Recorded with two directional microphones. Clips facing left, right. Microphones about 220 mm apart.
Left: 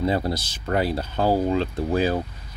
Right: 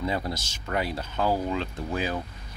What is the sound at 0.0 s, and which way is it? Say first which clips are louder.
Speech: left 6 dB; 35° left (ahead or behind).